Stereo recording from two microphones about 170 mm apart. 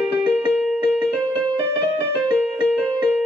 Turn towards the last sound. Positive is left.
turn(degrees=-10)  # may be behind; listen again after turning